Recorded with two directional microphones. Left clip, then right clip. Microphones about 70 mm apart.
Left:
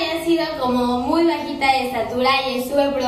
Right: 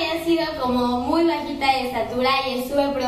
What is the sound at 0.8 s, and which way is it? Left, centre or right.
Speech, centre.